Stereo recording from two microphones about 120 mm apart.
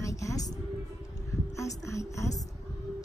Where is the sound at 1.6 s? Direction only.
25° left (ahead or behind).